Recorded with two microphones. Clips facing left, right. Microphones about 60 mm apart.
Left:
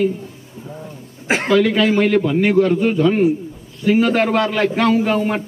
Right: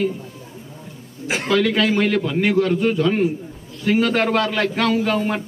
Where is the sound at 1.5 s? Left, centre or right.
Centre.